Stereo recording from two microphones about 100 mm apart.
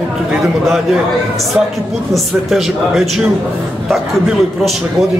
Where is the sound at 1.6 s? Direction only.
15° right (ahead or behind).